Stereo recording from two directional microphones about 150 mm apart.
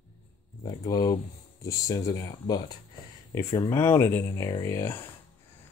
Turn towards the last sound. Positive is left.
turn(degrees=15)  # may be behind; listen again after turning